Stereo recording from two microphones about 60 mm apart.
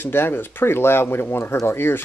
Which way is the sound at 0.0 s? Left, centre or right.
Left.